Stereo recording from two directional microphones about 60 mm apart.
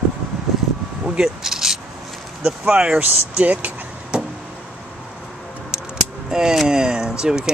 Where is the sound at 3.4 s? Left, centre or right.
Right.